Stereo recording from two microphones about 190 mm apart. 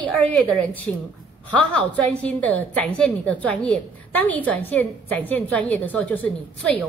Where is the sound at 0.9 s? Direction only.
5° left (ahead or behind).